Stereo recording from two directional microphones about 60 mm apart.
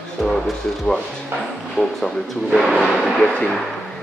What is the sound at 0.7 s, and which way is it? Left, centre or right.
Speech, centre.